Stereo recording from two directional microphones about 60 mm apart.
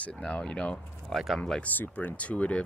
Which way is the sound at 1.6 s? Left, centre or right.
Left.